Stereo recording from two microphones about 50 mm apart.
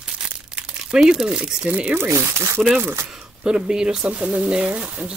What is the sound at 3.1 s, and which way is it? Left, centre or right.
Speech, centre.